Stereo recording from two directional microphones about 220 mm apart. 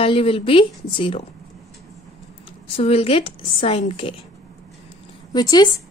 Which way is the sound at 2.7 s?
25° left (ahead or behind).